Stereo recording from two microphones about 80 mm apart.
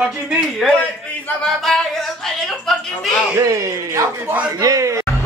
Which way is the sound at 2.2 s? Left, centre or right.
Centre.